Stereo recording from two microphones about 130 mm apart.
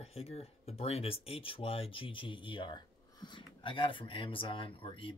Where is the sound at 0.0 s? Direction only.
50° left (ahead or behind).